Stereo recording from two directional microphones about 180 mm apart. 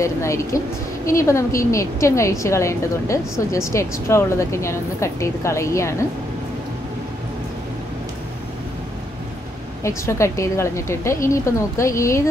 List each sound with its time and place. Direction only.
0.0 s a woman's voice: 15° left (ahead or behind)
9.8 s a woman's voice: 15° left (ahead or behind)